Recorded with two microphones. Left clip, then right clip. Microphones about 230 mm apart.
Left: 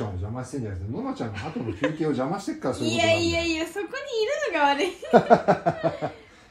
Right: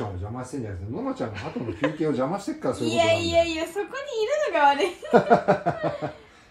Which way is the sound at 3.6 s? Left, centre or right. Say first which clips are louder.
Right 1 dB; right.